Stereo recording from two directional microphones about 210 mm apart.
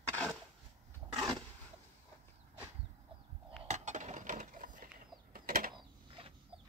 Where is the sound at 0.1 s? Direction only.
5° left (ahead or behind).